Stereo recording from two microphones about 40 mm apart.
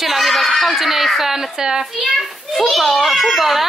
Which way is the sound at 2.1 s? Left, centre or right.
Centre.